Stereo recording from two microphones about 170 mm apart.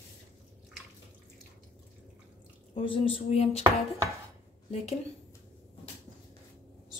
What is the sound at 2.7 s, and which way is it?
Speech, 30° left (ahead or behind).